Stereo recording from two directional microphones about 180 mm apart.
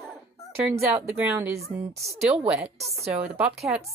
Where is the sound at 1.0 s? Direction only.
15° right (ahead or behind).